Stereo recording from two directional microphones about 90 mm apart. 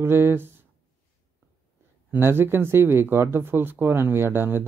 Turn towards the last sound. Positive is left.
turn(degrees=-25)  # may be behind; listen again after turning